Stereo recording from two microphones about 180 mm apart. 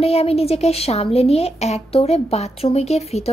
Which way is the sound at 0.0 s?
35° left (ahead or behind).